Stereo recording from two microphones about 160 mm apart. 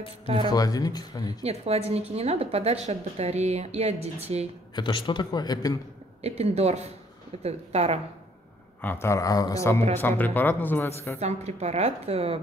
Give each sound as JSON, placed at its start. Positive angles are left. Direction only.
{"t": 0.5, "sound": "a man's voice", "side_deg": 25}
{"t": 1.4, "sound": "a woman's voice", "side_deg": -40}
{"t": 4.7, "sound": "a man's voice", "side_deg": 30}
{"t": 6.2, "sound": "a woman's voice", "side_deg": -40}
{"t": 8.8, "sound": "a man's voice", "side_deg": 15}
{"t": 11.1, "sound": "a woman's voice", "side_deg": -45}